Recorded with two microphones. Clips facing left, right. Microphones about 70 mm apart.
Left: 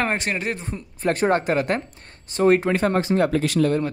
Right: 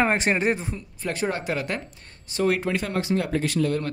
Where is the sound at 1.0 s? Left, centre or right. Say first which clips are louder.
Left 8 dB; left.